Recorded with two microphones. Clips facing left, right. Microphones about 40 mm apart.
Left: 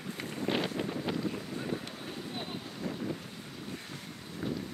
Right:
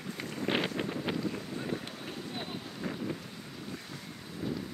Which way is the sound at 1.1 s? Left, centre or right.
Centre.